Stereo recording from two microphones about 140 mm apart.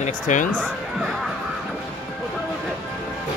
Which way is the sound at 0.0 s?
65° left (ahead or behind).